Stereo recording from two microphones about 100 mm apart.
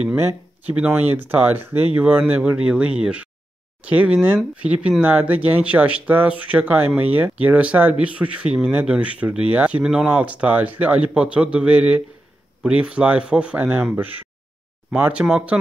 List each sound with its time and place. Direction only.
0.0 s speech: 20° right (ahead or behind)